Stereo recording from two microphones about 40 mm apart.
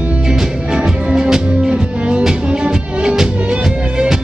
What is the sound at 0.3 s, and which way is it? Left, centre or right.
Music, centre.